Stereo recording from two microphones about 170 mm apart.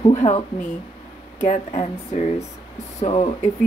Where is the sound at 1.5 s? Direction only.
40° left (ahead or behind).